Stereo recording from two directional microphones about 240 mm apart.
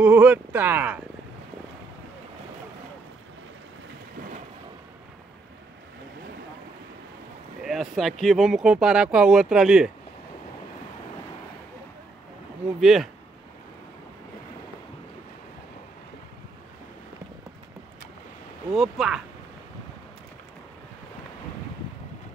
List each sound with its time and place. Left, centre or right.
0.0 s speech: centre
7.6 s speech: centre
12.8 s speech: centre
18.7 s speech: centre